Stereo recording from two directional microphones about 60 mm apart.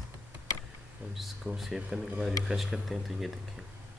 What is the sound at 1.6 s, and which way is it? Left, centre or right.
Speech, centre.